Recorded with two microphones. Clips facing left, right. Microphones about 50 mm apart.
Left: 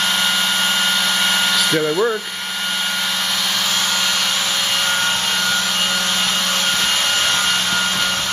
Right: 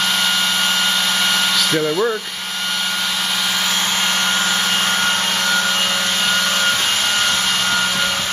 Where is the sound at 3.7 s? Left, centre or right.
Right.